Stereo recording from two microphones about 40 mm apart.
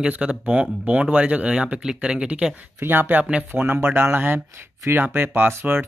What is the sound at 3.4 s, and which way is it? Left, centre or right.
Speech, right.